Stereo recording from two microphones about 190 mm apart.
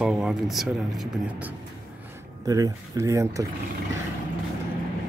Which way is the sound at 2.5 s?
20° right (ahead or behind).